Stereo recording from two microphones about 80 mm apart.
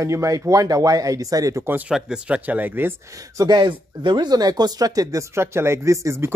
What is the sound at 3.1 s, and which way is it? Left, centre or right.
Speech, right.